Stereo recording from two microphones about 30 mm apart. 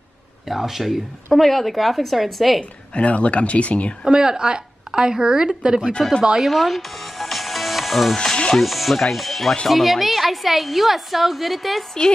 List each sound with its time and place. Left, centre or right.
0.5 s speech: centre
1.4 s a woman's voice: centre
2.9 s speech: left
4.0 s a woman's voice: right
6.0 s a woman's voice: centre